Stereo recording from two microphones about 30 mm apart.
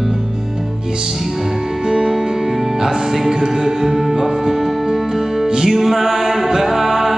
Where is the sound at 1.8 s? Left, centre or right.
Right.